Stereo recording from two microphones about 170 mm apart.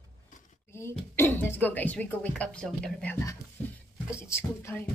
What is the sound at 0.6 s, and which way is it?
Speech, 15° left (ahead or behind).